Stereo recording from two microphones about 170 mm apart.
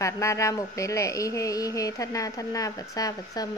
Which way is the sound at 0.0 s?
15° left (ahead or behind).